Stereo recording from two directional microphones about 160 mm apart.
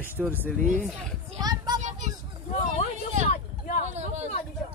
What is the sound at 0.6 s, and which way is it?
Speech, 50° right (ahead or behind).